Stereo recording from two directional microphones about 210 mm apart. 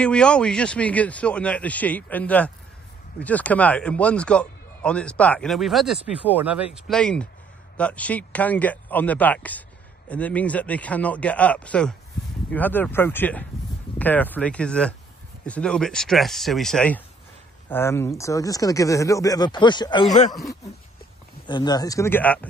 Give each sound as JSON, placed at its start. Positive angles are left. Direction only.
{"t": 0.0, "sound": "a man's voice", "side_deg": 5}
{"t": 21.5, "sound": "speech", "side_deg": 20}